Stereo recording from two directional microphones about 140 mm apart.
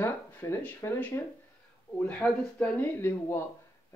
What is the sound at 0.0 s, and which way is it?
Speech, 20° left (ahead or behind).